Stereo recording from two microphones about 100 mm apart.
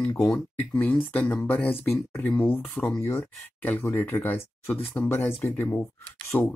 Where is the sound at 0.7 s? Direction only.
15° left (ahead or behind).